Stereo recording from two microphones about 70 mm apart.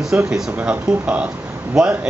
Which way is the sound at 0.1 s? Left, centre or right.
Right.